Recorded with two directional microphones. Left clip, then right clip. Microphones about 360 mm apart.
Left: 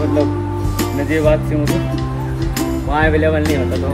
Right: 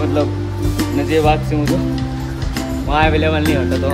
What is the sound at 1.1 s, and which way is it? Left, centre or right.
Music, centre.